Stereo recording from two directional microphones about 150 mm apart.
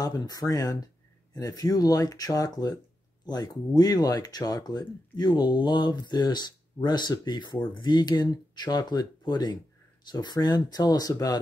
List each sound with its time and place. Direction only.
0.0 s speech: 25° left (ahead or behind)